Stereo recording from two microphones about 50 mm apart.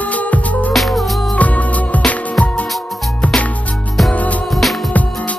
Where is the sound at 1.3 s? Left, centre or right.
Left.